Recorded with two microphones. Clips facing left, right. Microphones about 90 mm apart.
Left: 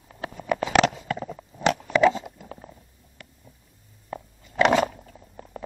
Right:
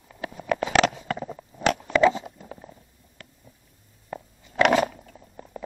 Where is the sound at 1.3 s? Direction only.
Centre (ahead or behind).